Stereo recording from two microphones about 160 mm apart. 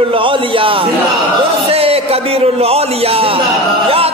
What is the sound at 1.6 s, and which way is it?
A man's voice, 40° right (ahead or behind).